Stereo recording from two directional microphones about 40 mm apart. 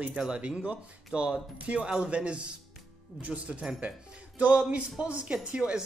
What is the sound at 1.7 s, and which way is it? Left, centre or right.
Speech, right.